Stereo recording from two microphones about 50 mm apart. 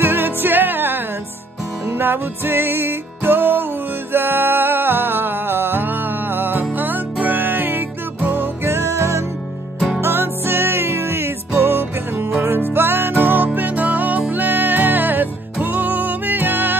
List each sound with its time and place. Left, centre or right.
0.0 s music: right
8.6 s music: right
10.0 s music: right